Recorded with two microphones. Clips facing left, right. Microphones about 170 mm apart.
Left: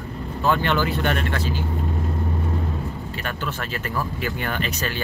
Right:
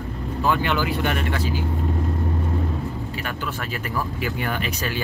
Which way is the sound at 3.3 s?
10° right (ahead or behind).